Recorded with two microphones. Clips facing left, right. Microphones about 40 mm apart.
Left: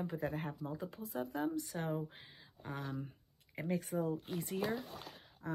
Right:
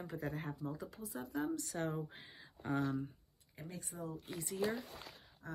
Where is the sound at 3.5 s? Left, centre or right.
Left.